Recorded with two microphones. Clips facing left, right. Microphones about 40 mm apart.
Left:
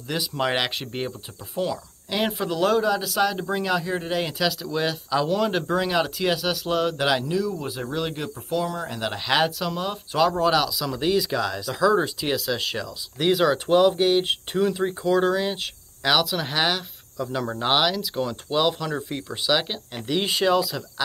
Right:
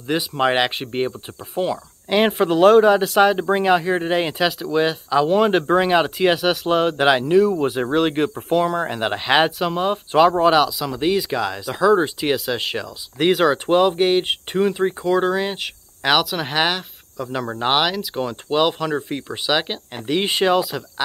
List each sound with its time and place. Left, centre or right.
0.0 s speech: right
5.3 s speech: right
9.1 s speech: right